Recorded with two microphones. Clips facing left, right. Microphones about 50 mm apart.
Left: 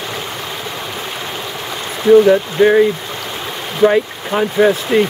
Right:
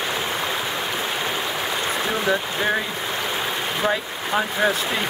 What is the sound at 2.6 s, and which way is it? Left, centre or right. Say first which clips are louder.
Speech: left 14 dB; centre.